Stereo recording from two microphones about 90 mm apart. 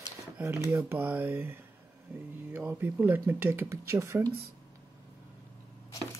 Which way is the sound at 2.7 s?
20° right (ahead or behind).